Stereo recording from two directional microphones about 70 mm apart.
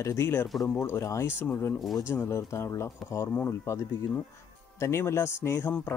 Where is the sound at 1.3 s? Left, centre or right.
Left.